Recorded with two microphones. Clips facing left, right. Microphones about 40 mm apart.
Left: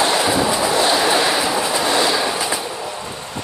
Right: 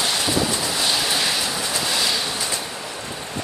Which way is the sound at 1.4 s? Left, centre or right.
Left.